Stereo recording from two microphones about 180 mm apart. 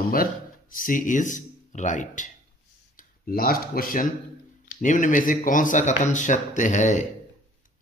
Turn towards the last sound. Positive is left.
turn(degrees=40)  # may be behind; listen again after turning